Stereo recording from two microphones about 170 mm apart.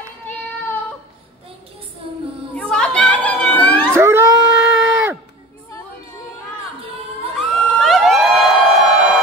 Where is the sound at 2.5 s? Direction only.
5° left (ahead or behind).